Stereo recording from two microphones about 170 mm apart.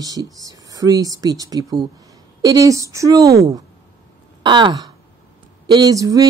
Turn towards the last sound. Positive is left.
turn(degrees=-20)  # may be behind; listen again after turning